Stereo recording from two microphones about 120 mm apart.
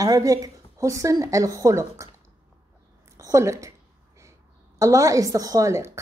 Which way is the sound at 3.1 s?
25° right (ahead or behind).